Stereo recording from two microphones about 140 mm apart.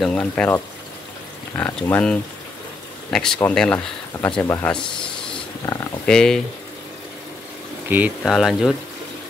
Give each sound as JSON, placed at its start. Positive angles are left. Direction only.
{"t": 0.0, "sound": "speech", "side_deg": 5}
{"t": 1.6, "sound": "speech", "side_deg": 10}
{"t": 6.0, "sound": "speech", "side_deg": 5}
{"t": 8.2, "sound": "speech", "side_deg": 0}